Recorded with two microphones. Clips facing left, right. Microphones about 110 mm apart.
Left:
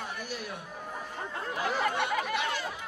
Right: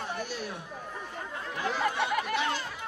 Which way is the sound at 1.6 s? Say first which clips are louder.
Even; centre (ahead or behind).